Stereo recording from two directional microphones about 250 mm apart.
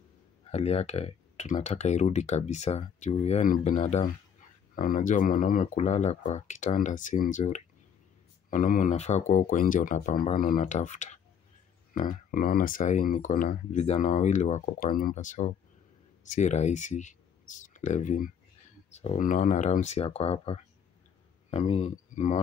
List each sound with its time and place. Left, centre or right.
0.5 s speech: left